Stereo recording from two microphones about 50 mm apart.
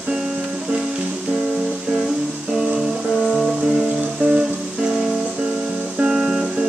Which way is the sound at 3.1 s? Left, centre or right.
Centre.